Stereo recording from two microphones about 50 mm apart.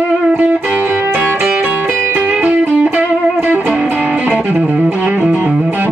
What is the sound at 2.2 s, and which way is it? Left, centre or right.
Music, right.